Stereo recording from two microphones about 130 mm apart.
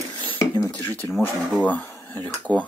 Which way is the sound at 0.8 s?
15° left (ahead or behind).